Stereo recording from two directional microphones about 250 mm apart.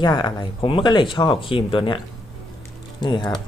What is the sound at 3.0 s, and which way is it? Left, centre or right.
Speech, centre.